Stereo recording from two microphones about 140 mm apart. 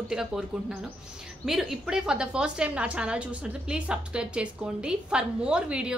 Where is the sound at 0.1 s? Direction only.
5° right (ahead or behind).